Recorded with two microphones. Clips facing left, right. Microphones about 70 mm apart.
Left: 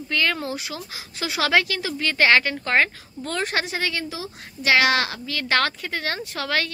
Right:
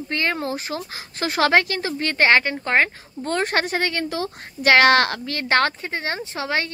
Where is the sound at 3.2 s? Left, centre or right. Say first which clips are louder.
Right 4 dB; right.